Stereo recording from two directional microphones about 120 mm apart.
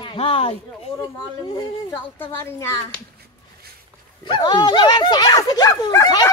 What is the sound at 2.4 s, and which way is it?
Speech, 25° left (ahead or behind).